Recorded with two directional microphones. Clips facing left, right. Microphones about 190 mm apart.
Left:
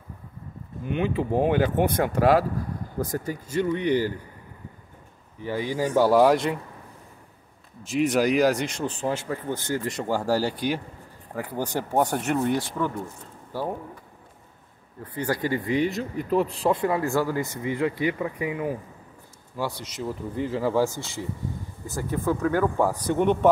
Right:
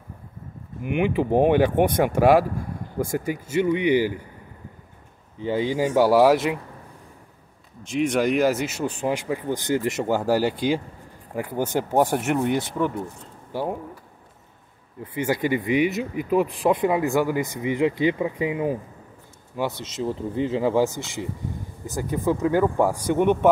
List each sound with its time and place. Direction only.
0.8 s speech: 15° right (ahead or behind)
5.4 s speech: 20° right (ahead or behind); by 6.6 s 5° right (ahead or behind)
7.8 s speech: 5° left (ahead or behind); by 11.8 s 20° right (ahead or behind)
11.9 s speech: 10° right (ahead or behind)
15.1 s speech: 20° right (ahead or behind)
15.9 s speech: 5° right (ahead or behind)
16.4 s speech: 15° right (ahead or behind)